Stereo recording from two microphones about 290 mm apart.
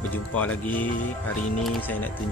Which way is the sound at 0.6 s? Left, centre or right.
Centre.